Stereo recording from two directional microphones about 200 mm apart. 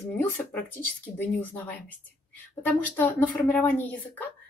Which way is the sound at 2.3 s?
10° left (ahead or behind).